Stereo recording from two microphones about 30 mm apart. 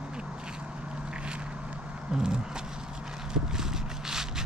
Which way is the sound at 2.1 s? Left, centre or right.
Right.